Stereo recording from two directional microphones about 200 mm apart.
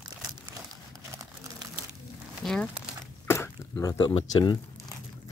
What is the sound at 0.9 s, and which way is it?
Crumpling, 15° right (ahead or behind).